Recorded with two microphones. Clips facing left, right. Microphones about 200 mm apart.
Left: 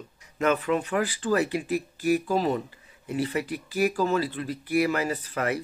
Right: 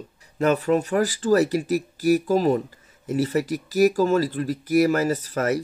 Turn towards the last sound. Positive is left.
turn(degrees=-40)  # may be behind; listen again after turning